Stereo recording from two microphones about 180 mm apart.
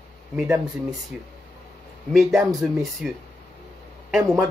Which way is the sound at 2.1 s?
Centre (ahead or behind).